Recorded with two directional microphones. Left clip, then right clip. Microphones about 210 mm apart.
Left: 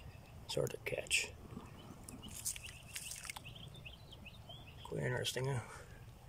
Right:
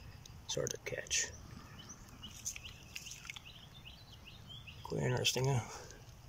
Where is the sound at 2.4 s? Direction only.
40° left (ahead or behind).